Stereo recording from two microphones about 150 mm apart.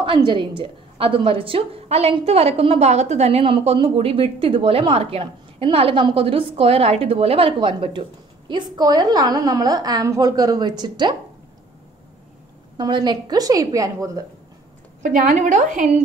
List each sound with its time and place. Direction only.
0.0 s a woman's voice: 35° right (ahead or behind)
12.7 s a woman's voice: 30° right (ahead or behind)
15.0 s a woman's voice: 60° right (ahead or behind)